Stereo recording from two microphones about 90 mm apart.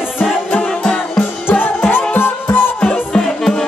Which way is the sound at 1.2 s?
20° left (ahead or behind).